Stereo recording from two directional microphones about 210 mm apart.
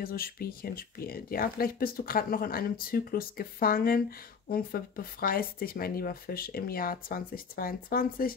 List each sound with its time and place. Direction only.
0.0 s speech: 45° left (ahead or behind)